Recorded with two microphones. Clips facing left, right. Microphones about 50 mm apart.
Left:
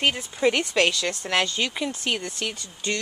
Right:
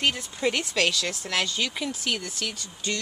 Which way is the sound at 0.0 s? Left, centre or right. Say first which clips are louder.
Left 3 dB; centre.